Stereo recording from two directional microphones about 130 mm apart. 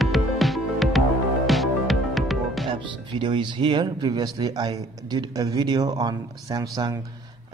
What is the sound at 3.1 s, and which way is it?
A man's voice, 40° right (ahead or behind).